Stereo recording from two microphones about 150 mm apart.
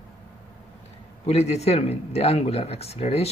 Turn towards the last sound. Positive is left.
turn(degrees=45)  # may be behind; listen again after turning